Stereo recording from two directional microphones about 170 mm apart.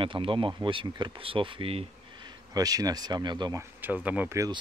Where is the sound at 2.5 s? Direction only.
20° right (ahead or behind).